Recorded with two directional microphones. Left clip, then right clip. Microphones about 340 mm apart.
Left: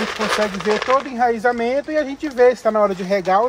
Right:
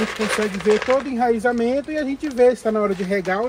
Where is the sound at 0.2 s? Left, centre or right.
Centre.